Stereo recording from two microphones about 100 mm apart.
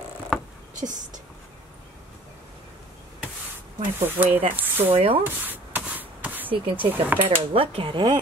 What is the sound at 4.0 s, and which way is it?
Speech, 20° right (ahead or behind).